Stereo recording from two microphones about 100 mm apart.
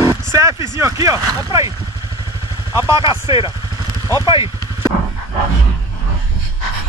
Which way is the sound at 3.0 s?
60° left (ahead or behind).